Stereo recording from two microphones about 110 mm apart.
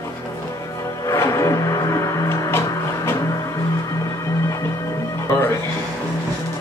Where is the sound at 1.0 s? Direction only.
25° left (ahead or behind).